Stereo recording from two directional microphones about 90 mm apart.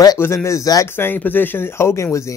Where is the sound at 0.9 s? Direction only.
25° left (ahead or behind).